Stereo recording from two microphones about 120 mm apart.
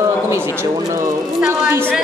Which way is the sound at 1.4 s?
20° right (ahead or behind).